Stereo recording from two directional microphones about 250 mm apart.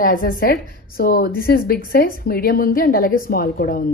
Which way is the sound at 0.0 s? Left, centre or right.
Left.